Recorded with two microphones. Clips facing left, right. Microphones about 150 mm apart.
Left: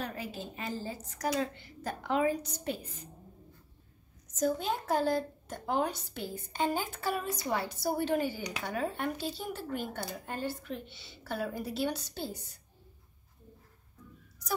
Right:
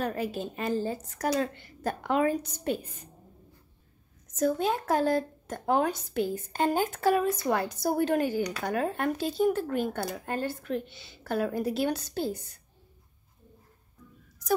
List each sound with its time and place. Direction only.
0.0 s a woman's voice: 55° right (ahead or behind)
4.5 s a woman's voice: 60° right (ahead or behind)